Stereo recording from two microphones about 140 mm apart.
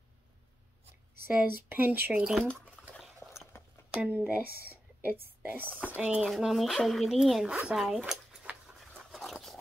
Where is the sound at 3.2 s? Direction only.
Centre (ahead or behind).